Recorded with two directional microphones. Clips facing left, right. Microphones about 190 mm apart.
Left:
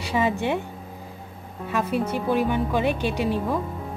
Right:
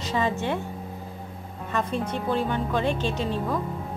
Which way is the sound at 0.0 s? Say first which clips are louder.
Left 2 dB; 15° left (ahead or behind).